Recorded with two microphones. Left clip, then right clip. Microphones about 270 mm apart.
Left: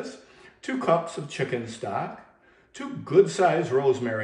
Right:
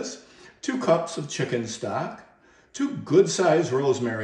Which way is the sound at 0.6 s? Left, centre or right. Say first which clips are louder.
Right 1 dB; right.